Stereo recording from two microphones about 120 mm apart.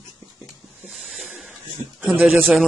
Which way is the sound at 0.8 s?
Centre (ahead or behind).